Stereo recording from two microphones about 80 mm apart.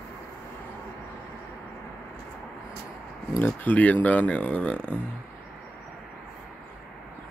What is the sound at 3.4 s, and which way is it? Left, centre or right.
Speech, left.